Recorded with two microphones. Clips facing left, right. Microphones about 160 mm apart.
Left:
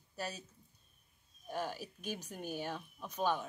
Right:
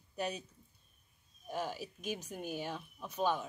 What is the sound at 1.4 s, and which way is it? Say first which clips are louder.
A woman's voice: right 1 dB; 10° right (ahead or behind).